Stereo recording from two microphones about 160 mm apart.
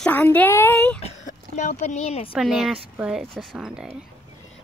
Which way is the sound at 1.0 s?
50° left (ahead or behind).